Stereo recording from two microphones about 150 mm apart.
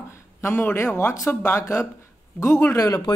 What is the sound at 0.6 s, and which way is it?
Speech, 10° left (ahead or behind).